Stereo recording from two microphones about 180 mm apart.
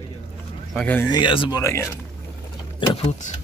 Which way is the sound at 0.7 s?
10° left (ahead or behind).